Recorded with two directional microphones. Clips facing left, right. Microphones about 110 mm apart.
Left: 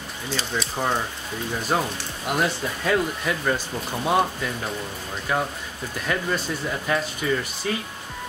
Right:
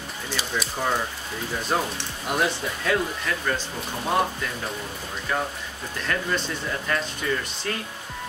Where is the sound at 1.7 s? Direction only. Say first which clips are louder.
Left 1 dB; 5° left (ahead or behind).